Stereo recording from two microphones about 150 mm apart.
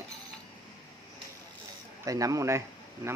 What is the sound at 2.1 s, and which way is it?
Speech, 20° right (ahead or behind).